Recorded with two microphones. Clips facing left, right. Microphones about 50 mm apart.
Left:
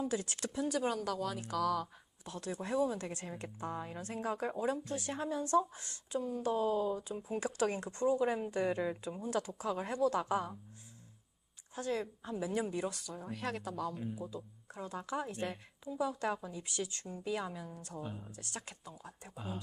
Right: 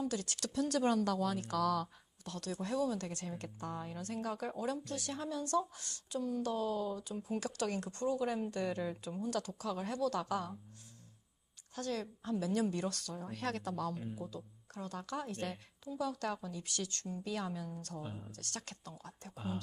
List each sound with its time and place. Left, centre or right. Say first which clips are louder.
0.0 s a woman's voice: left 2 dB; left
0.7 s a woman's voice: right 5 dB; centre
2.2 s a woman's voice: even; left
11.7 s a woman's voice: left 2 dB; left
14.3 s a woman's voice: left 2 dB; centre
17.9 s a woman's voice: left 5 dB; centre
18.3 s a woman's voice: even; centre